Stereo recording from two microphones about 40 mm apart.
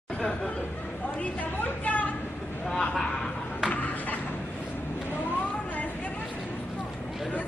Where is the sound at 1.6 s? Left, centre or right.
Left.